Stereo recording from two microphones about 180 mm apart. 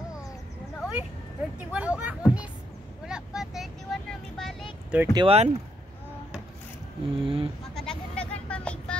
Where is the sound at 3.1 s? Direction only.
5° right (ahead or behind).